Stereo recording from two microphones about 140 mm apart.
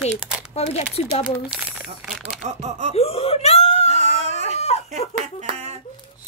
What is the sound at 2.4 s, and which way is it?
Speech, 55° right (ahead or behind).